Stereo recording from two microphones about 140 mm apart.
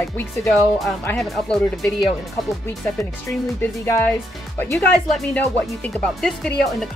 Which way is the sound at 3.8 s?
15° left (ahead or behind).